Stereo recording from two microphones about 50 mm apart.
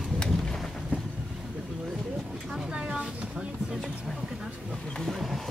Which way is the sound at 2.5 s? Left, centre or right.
Centre.